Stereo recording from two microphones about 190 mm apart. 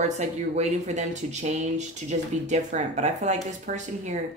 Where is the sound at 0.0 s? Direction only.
35° right (ahead or behind).